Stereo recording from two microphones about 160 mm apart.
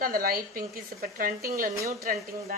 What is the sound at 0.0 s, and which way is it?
A woman's voice, 65° right (ahead or behind).